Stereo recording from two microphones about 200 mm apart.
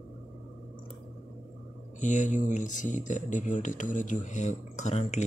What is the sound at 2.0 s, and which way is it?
Speech, 40° left (ahead or behind).